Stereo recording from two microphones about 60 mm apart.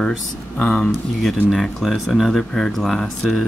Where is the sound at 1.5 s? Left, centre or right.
Centre.